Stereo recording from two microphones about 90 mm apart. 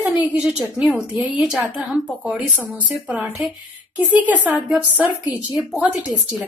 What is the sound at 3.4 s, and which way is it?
A woman's voice, 10° right (ahead or behind).